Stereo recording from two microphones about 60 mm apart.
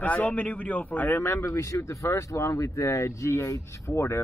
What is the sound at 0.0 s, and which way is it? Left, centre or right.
A man's voice, left.